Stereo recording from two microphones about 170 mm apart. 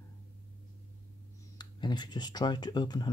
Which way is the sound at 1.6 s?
25° left (ahead or behind).